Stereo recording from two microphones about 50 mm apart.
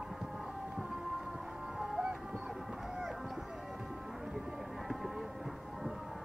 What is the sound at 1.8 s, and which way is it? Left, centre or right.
Music, centre.